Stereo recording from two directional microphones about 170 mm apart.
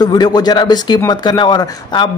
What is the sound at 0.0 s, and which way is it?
Speech, 25° left (ahead or behind).